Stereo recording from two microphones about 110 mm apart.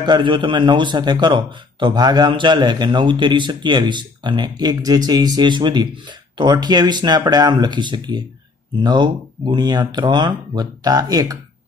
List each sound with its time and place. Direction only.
0.0 s a man's voice: 45° right (ahead or behind)